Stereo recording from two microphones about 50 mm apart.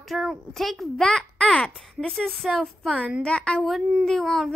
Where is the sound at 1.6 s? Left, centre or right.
Centre.